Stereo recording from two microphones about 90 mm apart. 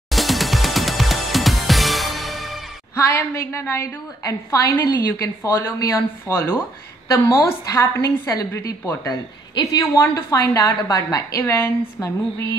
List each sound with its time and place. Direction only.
0.1 s music: centre (ahead or behind)
3.1 s speech: 30° left (ahead or behind)
4.3 s a woman's voice: 40° left (ahead or behind)
11.4 s speech: 25° left (ahead or behind)